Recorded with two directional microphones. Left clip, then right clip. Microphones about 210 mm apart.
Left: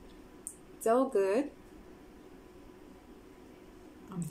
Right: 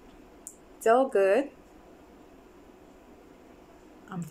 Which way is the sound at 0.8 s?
15° left (ahead or behind).